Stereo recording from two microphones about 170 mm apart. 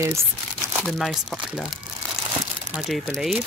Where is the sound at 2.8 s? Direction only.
Centre (ahead or behind).